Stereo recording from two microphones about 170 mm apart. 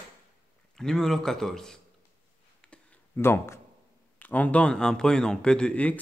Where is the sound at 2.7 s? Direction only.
15° left (ahead or behind).